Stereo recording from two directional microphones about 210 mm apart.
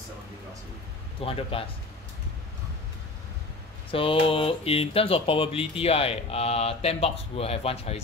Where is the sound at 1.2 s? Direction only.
25° left (ahead or behind).